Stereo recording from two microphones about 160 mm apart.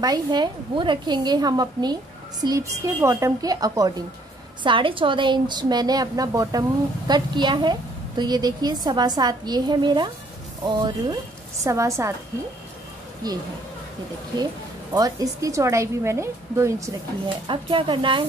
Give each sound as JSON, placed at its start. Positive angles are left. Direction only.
{"t": 0.0, "sound": "a woman's voice", "side_deg": -25}
{"t": 13.2, "sound": "a woman's voice", "side_deg": -25}
{"t": 14.4, "sound": "a woman's voice", "side_deg": -25}
{"t": 17.5, "sound": "speech", "side_deg": -30}